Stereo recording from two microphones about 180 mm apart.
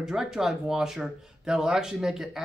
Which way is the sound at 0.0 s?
Centre (ahead or behind).